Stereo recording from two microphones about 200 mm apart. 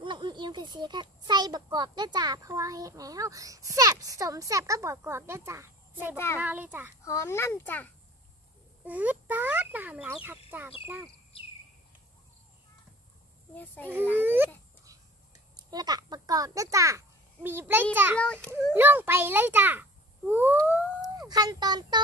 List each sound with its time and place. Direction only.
0.0 s a child's voice: 25° right (ahead or behind)
6.1 s a child's voice: 15° left (ahead or behind)
6.4 s a child's voice: 10° right (ahead or behind)
7.0 s a child's voice: 15° left (ahead or behind)
8.8 s a child's voice: 10° right (ahead or behind)
14.2 s a child's voice: 10° right (ahead or behind)
15.7 s a child's voice: 20° right (ahead or behind)
18.2 s a child's voice: 5° left (ahead or behind)
18.8 s a child's voice: 10° right (ahead or behind)
21.0 s speech: 20° right (ahead or behind)